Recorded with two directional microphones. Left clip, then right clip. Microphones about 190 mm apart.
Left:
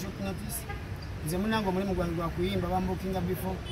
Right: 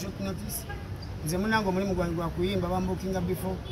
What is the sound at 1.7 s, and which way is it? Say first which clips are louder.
Speech: right 2 dB; 15° right (ahead or behind).